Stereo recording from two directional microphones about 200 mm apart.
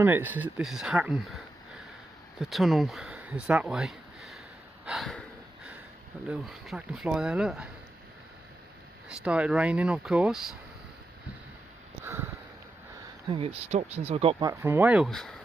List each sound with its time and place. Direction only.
0.0 s speech: 10° right (ahead or behind)
4.8 s a sound: centre (ahead or behind)
6.4 s speech: centre (ahead or behind)
9.1 s speech: 5° right (ahead or behind)
12.0 s a sound: 15° right (ahead or behind)
13.3 s speech: 25° right (ahead or behind)
14.5 s speech: 10° right (ahead or behind)